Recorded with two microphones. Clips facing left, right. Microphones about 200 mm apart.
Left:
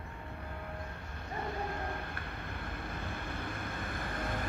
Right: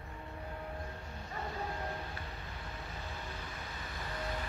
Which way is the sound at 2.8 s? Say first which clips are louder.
Left 4 dB; 55° left (ahead or behind).